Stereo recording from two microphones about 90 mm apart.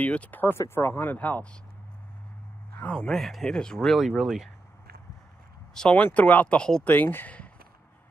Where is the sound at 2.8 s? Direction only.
10° left (ahead or behind).